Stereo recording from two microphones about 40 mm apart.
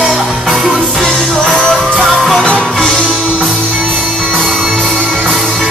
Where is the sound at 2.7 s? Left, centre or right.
Centre.